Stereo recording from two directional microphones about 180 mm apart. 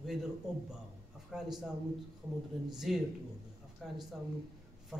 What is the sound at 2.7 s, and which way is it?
A man's voice, centre (ahead or behind).